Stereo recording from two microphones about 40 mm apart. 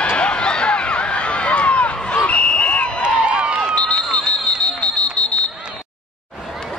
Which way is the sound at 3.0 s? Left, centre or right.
Right.